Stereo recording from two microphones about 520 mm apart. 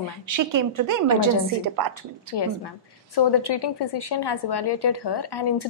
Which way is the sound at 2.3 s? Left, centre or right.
Left.